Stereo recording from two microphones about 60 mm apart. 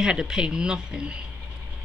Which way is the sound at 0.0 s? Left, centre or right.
Centre.